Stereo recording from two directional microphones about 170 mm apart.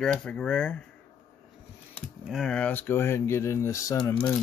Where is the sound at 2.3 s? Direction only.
Centre (ahead or behind).